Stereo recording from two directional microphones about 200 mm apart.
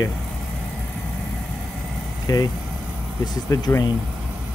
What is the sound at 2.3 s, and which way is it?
Speech, 20° left (ahead or behind).